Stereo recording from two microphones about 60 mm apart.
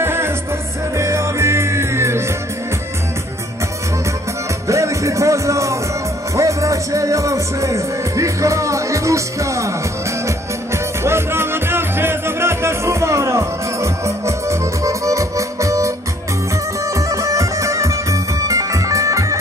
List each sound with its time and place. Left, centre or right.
0.0 s music: right
4.6 s music: right